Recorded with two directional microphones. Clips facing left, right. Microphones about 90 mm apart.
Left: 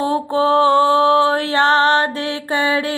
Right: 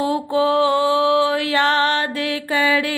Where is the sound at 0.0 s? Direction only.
35° left (ahead or behind).